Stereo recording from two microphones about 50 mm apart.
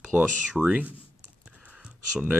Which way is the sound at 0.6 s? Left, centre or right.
Right.